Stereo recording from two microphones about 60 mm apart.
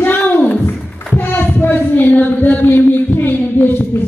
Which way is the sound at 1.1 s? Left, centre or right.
Left.